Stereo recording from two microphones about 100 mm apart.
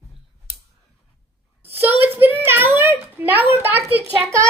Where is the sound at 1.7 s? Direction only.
20° right (ahead or behind).